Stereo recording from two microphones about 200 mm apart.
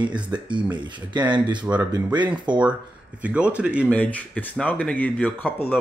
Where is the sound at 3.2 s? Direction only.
5° right (ahead or behind).